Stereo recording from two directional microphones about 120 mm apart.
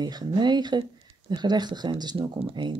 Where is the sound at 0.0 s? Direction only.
35° right (ahead or behind).